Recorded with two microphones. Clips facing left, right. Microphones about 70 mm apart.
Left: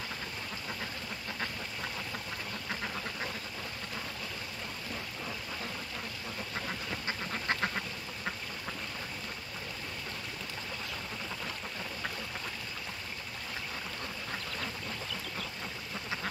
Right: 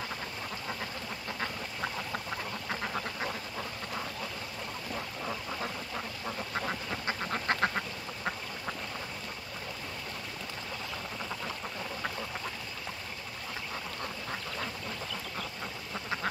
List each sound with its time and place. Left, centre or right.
2.7 s duck: centre
6.6 s duck: right